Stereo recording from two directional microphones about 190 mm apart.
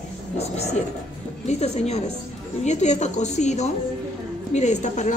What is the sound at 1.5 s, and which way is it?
A woman's voice, 35° left (ahead or behind).